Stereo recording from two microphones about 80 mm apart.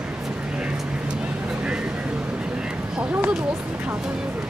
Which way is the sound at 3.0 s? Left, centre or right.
Centre.